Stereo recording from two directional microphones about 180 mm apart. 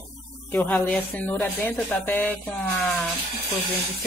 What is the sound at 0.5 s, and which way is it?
Speech, 10° left (ahead or behind).